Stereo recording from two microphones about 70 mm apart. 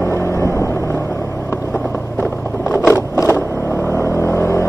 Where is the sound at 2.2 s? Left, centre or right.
Left.